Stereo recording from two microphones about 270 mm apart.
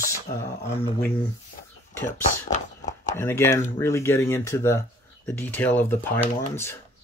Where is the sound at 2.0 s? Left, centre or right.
Left.